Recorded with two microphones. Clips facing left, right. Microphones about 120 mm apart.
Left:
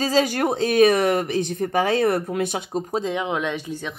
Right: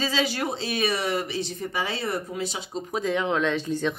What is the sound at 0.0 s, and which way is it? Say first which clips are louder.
Speech: left 6 dB; 45° left (ahead or behind).